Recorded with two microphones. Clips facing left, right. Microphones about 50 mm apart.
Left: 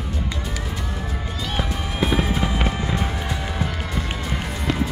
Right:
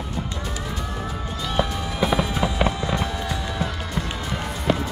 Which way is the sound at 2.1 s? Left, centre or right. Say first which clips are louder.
Even; left.